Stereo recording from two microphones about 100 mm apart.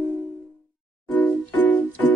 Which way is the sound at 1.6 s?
15° left (ahead or behind).